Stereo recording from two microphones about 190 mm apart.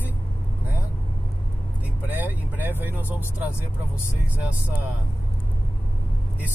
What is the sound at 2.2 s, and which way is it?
Speech, 10° right (ahead or behind).